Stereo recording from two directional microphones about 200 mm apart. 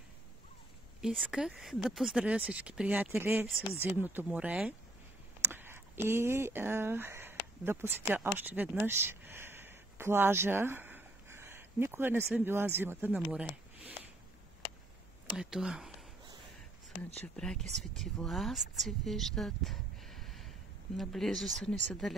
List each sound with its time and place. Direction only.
1.0 s speech: 5° right (ahead or behind)
15.3 s speech: 5° right (ahead or behind)
17.4 s speech: 5° left (ahead or behind)